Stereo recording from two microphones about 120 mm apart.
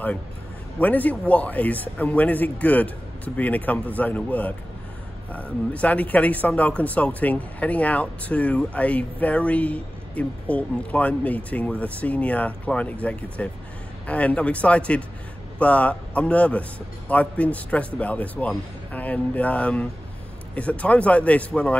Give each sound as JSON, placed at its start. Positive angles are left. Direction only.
{"t": 0.7, "sound": "speech", "side_deg": 15}